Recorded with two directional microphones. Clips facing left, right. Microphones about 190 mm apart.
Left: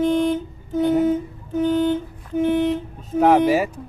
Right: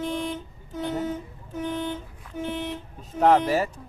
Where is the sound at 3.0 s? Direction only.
5° left (ahead or behind).